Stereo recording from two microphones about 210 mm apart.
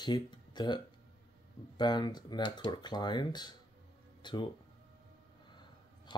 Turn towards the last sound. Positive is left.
turn(degrees=20)  # may be behind; listen again after turning